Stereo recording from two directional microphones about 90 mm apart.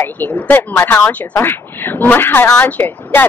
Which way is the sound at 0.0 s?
20° left (ahead or behind).